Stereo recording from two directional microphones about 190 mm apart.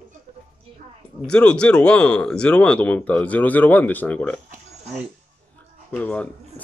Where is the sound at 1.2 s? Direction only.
5° left (ahead or behind).